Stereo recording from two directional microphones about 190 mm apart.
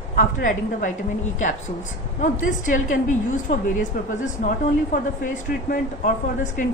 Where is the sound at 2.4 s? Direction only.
45° left (ahead or behind).